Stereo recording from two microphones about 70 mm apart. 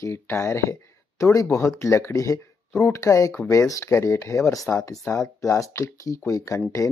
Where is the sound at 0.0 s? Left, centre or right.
Left.